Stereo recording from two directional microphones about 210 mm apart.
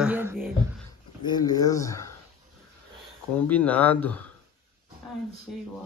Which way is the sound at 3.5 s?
5° left (ahead or behind).